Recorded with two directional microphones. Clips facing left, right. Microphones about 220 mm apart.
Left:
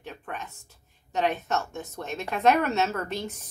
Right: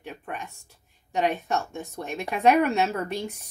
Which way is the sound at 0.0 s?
15° right (ahead or behind).